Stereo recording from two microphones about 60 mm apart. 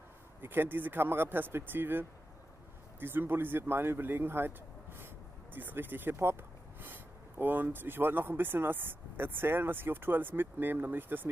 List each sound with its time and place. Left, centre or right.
0.4 s speech: right